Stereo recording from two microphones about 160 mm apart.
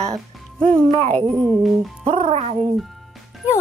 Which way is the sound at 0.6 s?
35° right (ahead or behind).